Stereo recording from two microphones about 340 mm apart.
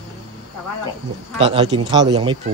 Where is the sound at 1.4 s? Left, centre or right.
Centre.